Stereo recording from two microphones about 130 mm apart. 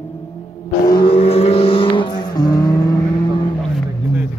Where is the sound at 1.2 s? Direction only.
50° left (ahead or behind).